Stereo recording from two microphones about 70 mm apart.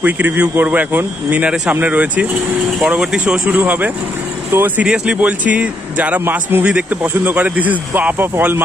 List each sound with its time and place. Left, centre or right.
0.0 s a man's voice: right
3.5 s a man's voice: right
4.5 s speech: right
4.8 s a man's voice: centre; by 8.6 s right